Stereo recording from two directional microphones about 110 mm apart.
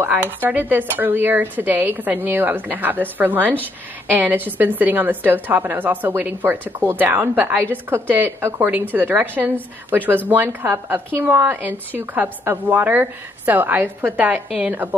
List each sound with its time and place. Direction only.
0.0 s a woman's voice: 15° right (ahead or behind)